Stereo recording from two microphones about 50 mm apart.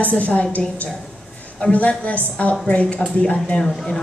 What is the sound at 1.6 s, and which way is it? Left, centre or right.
A woman's voice, left.